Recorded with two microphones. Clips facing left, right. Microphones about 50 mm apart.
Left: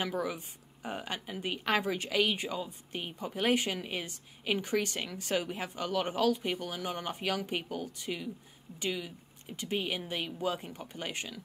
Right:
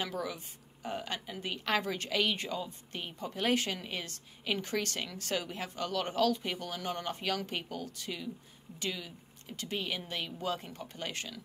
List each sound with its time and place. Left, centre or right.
0.0 s a woman's voice: centre